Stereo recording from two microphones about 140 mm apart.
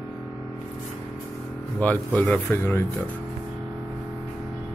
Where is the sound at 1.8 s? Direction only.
10° left (ahead or behind).